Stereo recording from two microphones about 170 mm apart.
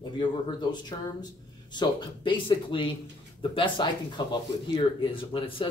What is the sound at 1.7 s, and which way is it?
Speech, 30° left (ahead or behind).